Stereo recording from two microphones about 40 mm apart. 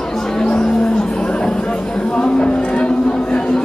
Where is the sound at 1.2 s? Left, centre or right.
Left.